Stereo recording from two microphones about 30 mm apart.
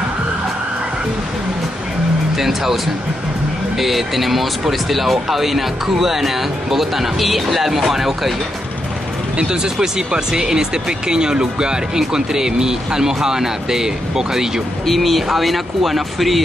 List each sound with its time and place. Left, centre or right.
2.3 s speech: centre
9.4 s speech: right
14.9 s speech: centre